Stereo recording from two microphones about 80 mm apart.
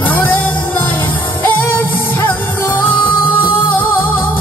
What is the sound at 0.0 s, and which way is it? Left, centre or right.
Music, left.